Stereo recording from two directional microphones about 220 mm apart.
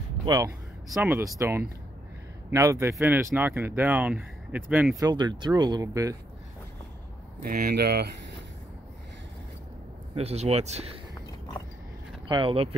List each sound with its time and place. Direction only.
0.2 s speech: 15° right (ahead or behind)
0.8 s speech: 5° right (ahead or behind)
7.4 s speech: 40° right (ahead or behind)
10.1 s speech: 30° right (ahead or behind)
12.3 s speech: 25° right (ahead or behind)